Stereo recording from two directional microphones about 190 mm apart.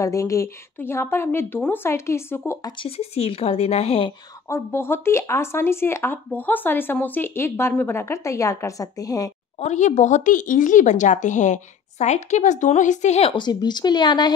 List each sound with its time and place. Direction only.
0.0 s speech: 15° left (ahead or behind)
2.8 s speech: 30° left (ahead or behind)
4.5 s speech: 15° left (ahead or behind)
9.6 s speech: 35° left (ahead or behind)